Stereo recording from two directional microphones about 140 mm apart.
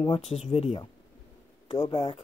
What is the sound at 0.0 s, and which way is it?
Speech, 40° left (ahead or behind).